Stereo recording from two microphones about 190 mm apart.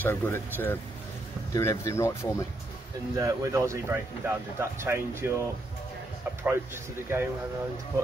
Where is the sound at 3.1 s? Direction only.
15° right (ahead or behind).